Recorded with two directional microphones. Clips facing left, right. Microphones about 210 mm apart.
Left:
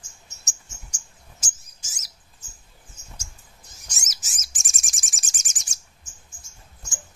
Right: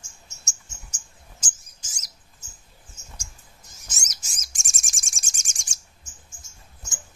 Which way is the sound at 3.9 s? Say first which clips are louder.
Even; 5° left (ahead or behind).